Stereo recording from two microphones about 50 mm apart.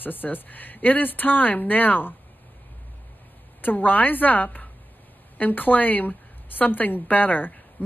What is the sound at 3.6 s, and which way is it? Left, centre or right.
A woman's voice, left.